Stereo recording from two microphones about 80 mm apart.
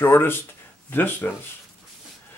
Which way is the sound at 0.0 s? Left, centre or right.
Left.